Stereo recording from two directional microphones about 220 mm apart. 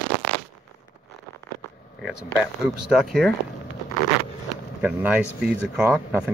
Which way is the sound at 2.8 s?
Centre (ahead or behind).